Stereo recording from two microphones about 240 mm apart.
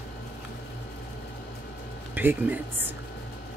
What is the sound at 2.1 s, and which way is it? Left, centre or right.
Speech, centre.